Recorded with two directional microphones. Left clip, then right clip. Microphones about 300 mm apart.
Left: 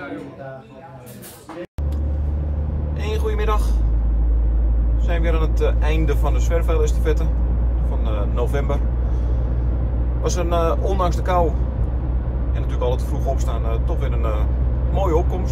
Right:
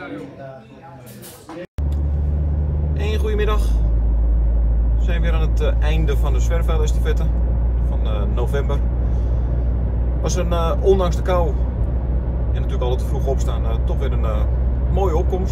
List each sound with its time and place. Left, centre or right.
3.3 s vehicle: centre
5.0 s speech: centre
10.2 s speech: centre
12.7 s speech: centre